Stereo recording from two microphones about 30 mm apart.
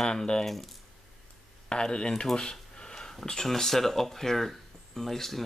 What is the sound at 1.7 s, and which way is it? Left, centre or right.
Speech, left.